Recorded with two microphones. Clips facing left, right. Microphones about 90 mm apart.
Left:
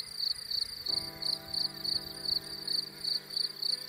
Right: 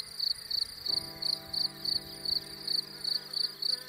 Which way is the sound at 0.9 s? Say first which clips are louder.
Even; 20° right (ahead or behind).